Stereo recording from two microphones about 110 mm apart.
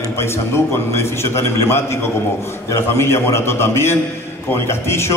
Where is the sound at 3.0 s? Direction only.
25° left (ahead or behind).